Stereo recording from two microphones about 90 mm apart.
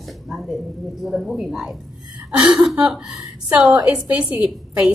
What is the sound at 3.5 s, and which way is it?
A woman's voice, 15° right (ahead or behind).